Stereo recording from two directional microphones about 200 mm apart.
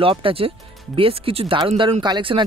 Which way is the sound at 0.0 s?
25° right (ahead or behind).